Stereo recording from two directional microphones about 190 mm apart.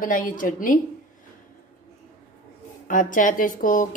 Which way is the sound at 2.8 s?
45° left (ahead or behind).